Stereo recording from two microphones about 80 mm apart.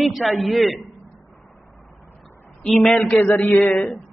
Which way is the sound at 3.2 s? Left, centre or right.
Left.